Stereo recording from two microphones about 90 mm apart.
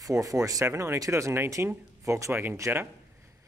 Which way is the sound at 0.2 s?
40° right (ahead or behind).